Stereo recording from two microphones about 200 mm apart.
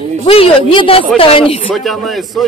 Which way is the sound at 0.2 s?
30° left (ahead or behind).